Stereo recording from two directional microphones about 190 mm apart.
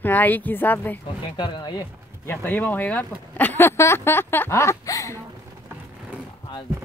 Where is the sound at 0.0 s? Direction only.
10° left (ahead or behind).